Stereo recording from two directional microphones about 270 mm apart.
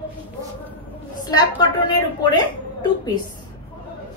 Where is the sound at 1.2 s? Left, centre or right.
Centre.